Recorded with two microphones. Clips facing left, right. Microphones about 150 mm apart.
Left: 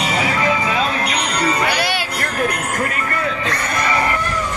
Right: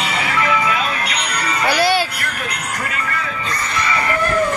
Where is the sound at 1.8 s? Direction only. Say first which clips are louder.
Right 5 dB; 35° right (ahead or behind).